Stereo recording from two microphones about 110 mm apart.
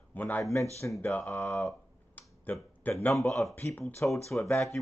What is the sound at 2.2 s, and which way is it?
Finger snapping, 15° left (ahead or behind).